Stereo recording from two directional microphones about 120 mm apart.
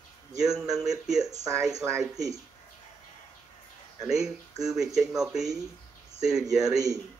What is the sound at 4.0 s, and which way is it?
Speech, 5° right (ahead or behind).